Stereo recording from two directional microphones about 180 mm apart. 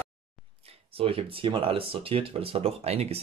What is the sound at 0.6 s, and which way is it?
Speech, 30° right (ahead or behind).